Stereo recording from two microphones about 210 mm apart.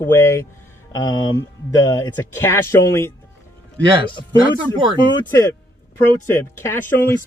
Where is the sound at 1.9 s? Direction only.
15° left (ahead or behind).